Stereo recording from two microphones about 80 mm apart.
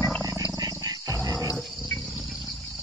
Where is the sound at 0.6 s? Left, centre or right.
Right.